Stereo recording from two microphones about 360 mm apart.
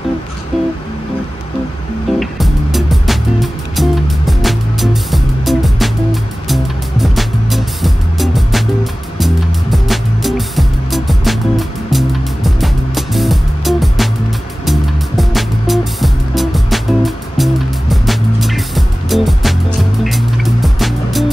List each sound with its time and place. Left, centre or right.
2.1 s music: centre